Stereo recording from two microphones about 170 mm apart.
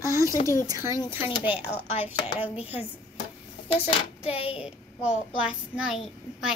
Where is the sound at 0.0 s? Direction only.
15° right (ahead or behind).